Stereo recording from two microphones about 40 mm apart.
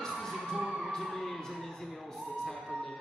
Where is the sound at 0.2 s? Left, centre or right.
Centre.